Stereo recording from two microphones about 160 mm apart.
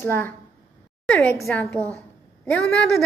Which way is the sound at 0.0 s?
15° left (ahead or behind).